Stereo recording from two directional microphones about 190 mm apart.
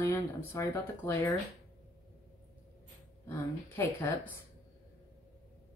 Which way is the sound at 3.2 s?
10° left (ahead or behind).